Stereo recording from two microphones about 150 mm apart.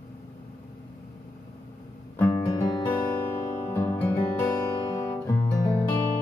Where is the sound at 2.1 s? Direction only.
15° left (ahead or behind).